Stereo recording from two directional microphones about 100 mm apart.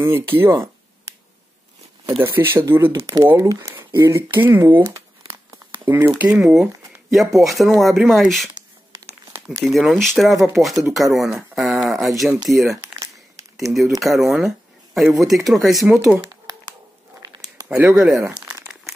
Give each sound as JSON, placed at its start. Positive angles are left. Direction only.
{"t": 0.0, "sound": "speech", "side_deg": -20}
{"t": 2.2, "sound": "speech", "side_deg": -20}
{"t": 6.4, "sound": "speech", "side_deg": 0}
{"t": 9.7, "sound": "speech", "side_deg": 0}
{"t": 13.0, "sound": "crumpling", "side_deg": -35}
{"t": 13.7, "sound": "speech", "side_deg": 0}
{"t": 17.2, "sound": "a sound", "side_deg": -40}
{"t": 17.6, "sound": "speech", "side_deg": -15}
{"t": 18.4, "sound": "crumpling", "side_deg": -15}